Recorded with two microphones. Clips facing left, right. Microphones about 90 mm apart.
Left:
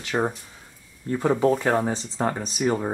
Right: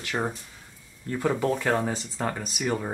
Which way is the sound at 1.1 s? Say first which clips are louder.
Left 5 dB; 20° left (ahead or behind).